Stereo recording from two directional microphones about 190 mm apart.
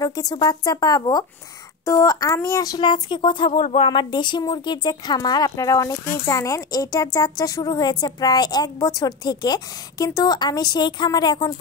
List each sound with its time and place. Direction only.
0.0 s speech: 20° left (ahead or behind)
3.5 s speech: 40° left (ahead or behind)
3.9 s speech: 25° left (ahead or behind)